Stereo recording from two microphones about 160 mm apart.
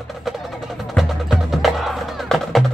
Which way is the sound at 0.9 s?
Centre (ahead or behind).